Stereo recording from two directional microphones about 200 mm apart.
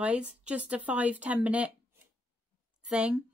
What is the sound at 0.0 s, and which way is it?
Speech, 5° right (ahead or behind).